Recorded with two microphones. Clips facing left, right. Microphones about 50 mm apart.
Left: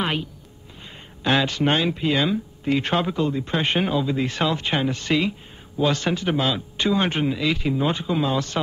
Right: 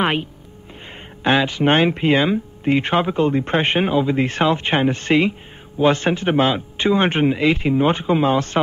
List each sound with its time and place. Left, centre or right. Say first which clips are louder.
0.0 s speech: right 5 dB; right
1.2 s speech: right 4 dB; right
1.7 s a man's voice: right 9 dB; right
3.3 s a man's voice: right 5 dB; right